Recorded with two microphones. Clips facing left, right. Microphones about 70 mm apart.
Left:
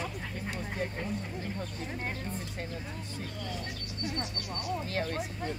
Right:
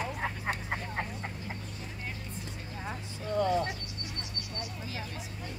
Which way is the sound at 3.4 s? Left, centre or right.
Right.